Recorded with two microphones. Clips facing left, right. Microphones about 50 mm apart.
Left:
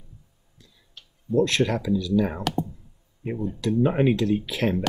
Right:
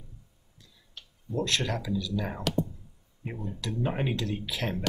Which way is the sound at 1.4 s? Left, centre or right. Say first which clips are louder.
Left 7 dB; left.